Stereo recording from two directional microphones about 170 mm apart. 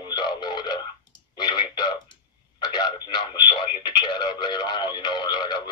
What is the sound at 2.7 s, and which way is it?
Radio, 25° left (ahead or behind).